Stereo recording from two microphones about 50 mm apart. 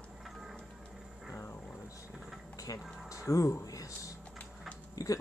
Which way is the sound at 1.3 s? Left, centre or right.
Left.